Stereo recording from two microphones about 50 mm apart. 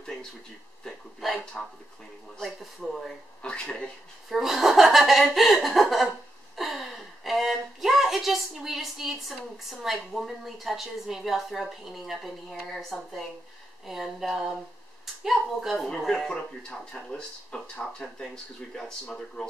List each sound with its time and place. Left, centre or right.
0.0 s a sound: centre
0.8 s speech: centre
1.4 s speech: centre
2.6 s speech: centre
3.4 s speech: centre
4.3 s a woman's voice: centre
16.3 s speech: centre